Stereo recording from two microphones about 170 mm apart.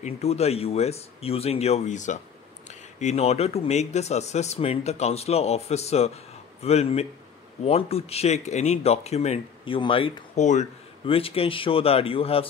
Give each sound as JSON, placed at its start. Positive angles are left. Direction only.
{"t": 0.0, "sound": "speech", "side_deg": 40}
{"t": 10.4, "sound": "speech", "side_deg": 45}